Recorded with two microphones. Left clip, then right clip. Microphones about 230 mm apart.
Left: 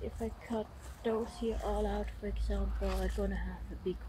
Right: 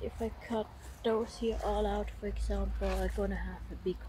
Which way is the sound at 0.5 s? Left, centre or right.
Right.